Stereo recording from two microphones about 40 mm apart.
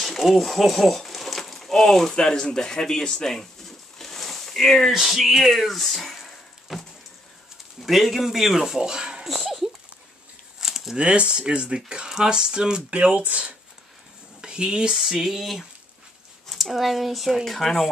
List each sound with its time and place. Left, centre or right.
0.0 s a sound: centre
2.1 s speech: centre
4.9 s speech: centre
7.8 s speech: centre
8.8 s a sound: centre
9.3 s a sound: centre
11.0 s speech: right
12.9 s speech: right
15.0 s speech: centre
17.6 s speech: centre